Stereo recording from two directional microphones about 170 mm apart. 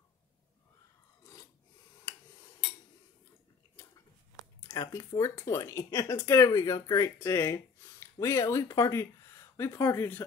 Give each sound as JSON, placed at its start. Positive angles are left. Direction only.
{"t": 1.2, "sound": "filing", "side_deg": 20}
{"t": 4.6, "sound": "speech", "side_deg": 15}